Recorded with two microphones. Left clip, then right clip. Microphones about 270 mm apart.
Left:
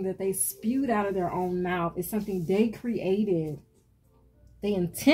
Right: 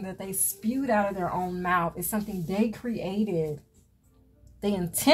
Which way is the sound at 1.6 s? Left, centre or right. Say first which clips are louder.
Right 4 dB; right.